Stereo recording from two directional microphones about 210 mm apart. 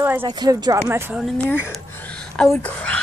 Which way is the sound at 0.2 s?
20° right (ahead or behind).